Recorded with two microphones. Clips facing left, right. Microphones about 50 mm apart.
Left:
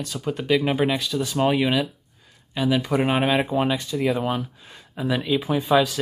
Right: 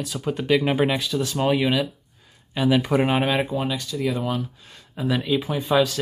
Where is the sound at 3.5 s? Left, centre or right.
Left.